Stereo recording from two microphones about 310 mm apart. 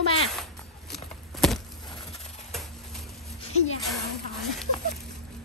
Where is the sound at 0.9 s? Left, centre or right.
Centre.